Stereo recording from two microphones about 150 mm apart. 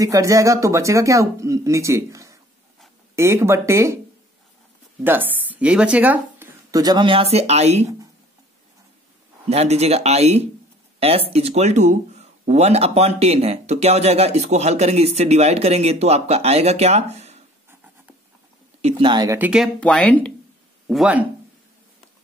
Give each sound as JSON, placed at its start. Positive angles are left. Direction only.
{"t": 0.0, "sound": "speech", "side_deg": -20}
{"t": 5.0, "sound": "speech", "side_deg": -15}
{"t": 6.7, "sound": "speech", "side_deg": -25}
{"t": 9.5, "sound": "speech", "side_deg": -45}
{"t": 18.8, "sound": "speech", "side_deg": -40}
{"t": 19.3, "sound": "speech", "side_deg": -10}
{"t": 19.6, "sound": "speech", "side_deg": 5}
{"t": 20.9, "sound": "speech", "side_deg": -5}